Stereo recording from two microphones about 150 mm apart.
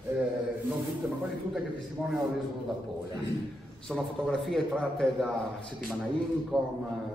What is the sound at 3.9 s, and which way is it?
Speech, centre (ahead or behind).